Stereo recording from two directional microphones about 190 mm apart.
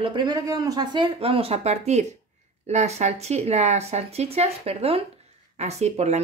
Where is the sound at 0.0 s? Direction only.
25° right (ahead or behind).